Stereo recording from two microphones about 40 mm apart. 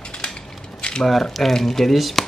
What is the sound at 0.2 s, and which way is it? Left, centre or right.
Crushing, left.